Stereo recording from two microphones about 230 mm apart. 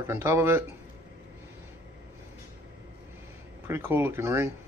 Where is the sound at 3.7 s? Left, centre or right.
Centre.